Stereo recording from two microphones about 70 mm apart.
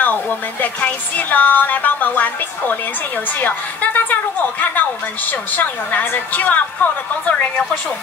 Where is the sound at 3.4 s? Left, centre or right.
Left.